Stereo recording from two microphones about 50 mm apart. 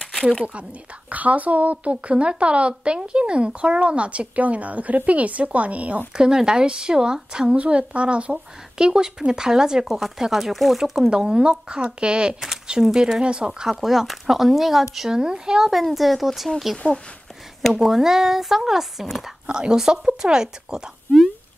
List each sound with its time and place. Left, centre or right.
1.1 s a woman's voice: right
6.1 s a woman's voice: centre
11.1 s a woman's voice: centre
15.7 s speech: centre
16.7 s speech: left
17.6 s speech: centre
19.4 s a woman's voice: centre